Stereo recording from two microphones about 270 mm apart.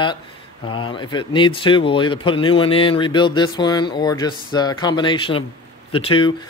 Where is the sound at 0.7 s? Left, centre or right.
Centre.